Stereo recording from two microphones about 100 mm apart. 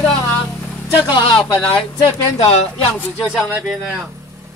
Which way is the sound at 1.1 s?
55° left (ahead or behind).